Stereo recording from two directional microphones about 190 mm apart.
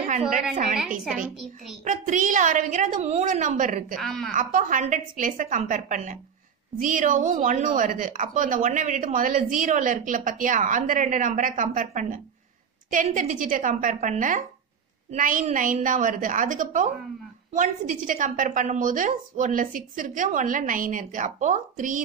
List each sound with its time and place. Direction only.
0.0 s a woman's voice: 40° right (ahead or behind)
0.7 s a woman's voice: 5° right (ahead or behind)
1.9 s a woman's voice: 40° right (ahead or behind)
4.0 s a woman's voice: centre (ahead or behind)
4.3 s a woman's voice: 45° right (ahead or behind)